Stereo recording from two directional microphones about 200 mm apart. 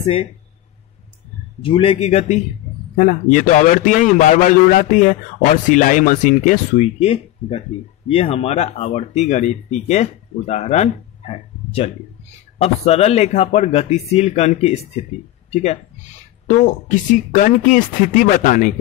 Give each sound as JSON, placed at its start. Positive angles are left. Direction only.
{"t": 0.0, "sound": "speech", "side_deg": 30}
{"t": 1.6, "sound": "a man's voice", "side_deg": 25}